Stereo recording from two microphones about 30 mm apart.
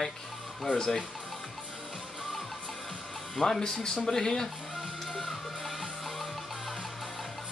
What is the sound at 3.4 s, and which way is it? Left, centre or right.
Speech, centre.